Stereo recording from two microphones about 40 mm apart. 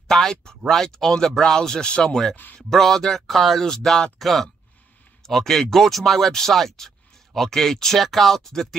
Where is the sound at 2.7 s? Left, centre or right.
Centre.